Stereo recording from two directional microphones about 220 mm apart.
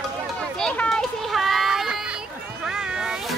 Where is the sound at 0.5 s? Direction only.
5° left (ahead or behind).